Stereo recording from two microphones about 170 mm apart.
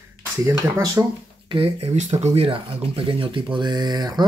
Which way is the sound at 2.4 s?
30° right (ahead or behind).